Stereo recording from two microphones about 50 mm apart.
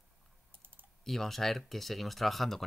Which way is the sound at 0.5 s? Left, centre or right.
Right.